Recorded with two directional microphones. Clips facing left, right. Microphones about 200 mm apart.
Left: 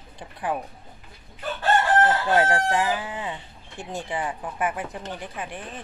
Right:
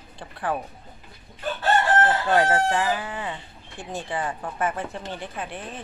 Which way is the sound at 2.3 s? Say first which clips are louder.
Right 1 dB; 15° left (ahead or behind).